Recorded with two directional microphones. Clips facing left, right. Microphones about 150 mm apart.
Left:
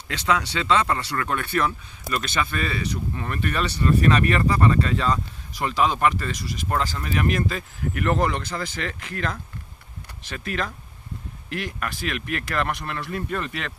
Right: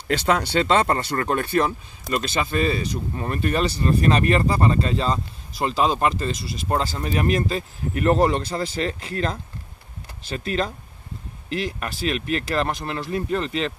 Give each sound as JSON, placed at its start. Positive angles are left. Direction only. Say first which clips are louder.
{"t": 0.3, "sound": "speech", "louder": "right 2 dB", "side_deg": -45}
{"t": 11.8, "sound": "speech", "louder": "right 3 dB", "side_deg": -25}